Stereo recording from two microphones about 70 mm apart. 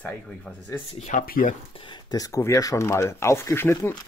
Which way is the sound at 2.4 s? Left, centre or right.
Left.